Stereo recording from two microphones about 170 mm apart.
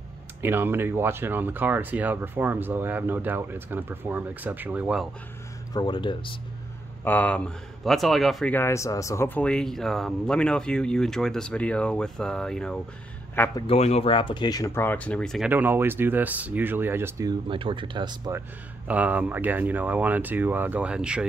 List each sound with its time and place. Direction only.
0.4 s speech: 15° right (ahead or behind)
5.7 s speech: 25° left (ahead or behind)
7.1 s speech: 10° left (ahead or behind)
8.5 s speech: 15° left (ahead or behind)
13.6 s speech: 35° left (ahead or behind); by 15.4 s 5° left (ahead or behind)
15.4 s speech: 10° right (ahead or behind)
18.9 s speech: 10° right (ahead or behind)